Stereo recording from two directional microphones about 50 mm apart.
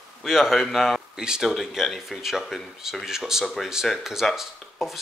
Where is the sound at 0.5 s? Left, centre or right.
Centre.